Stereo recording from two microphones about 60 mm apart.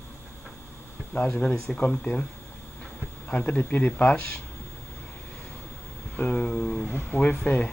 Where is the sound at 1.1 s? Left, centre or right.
Left.